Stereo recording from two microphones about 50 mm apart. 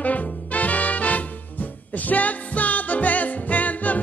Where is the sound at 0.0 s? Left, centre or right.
Left.